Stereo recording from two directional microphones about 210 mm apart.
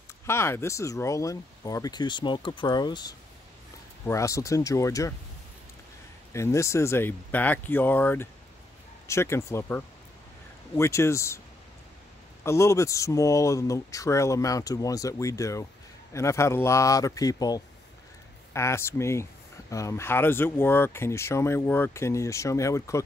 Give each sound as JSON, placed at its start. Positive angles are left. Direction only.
{"t": 0.3, "sound": "speech", "side_deg": 10}
{"t": 6.3, "sound": "speech", "side_deg": 15}
{"t": 12.4, "sound": "speech", "side_deg": 15}